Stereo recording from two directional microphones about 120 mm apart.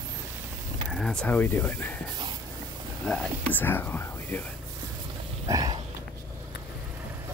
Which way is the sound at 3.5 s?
15° left (ahead or behind).